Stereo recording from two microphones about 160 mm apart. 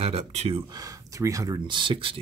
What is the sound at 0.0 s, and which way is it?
Speech, 40° right (ahead or behind).